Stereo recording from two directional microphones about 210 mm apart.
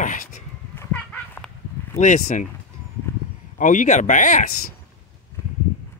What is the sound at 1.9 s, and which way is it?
Speech, 35° left (ahead or behind).